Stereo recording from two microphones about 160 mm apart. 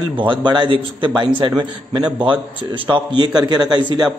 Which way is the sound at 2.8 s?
30° right (ahead or behind).